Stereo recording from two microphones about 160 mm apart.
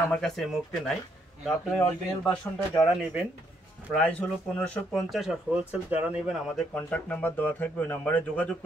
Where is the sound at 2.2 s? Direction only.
10° left (ahead or behind).